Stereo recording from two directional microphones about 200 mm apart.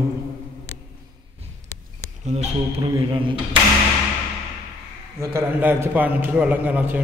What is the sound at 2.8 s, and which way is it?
Speech, 25° right (ahead or behind).